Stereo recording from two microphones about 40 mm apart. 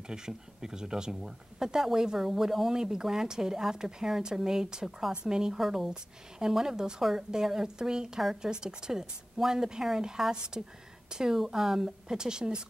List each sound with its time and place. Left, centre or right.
0.1 s speech: centre
5.6 s speech: centre
6.4 s speech: centre
7.0 s speech: centre